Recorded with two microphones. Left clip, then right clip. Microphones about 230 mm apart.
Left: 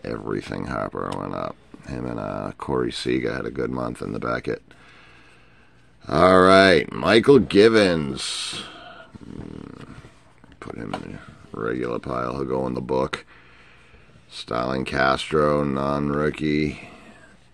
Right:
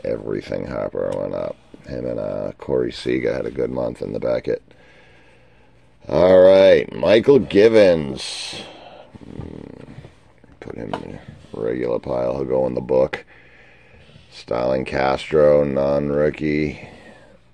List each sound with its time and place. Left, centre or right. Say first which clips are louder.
0.0 s speech: right 5 dB; centre
6.1 s speech: right 3 dB; centre
11.6 s speech: right 4 dB; centre
14.3 s speech: right 5 dB; centre